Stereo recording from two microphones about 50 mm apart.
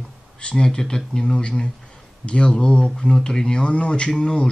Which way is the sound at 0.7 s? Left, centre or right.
Centre.